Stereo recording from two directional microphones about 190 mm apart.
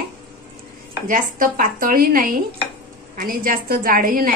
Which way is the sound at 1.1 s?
45° right (ahead or behind).